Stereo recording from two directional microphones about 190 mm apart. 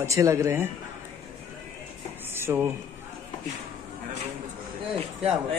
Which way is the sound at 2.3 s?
10° right (ahead or behind).